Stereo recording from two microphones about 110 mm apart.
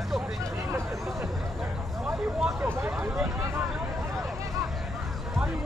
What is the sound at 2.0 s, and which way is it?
Vehicle, 5° right (ahead or behind).